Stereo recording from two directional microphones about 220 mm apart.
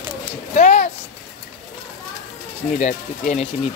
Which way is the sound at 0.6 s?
35° left (ahead or behind).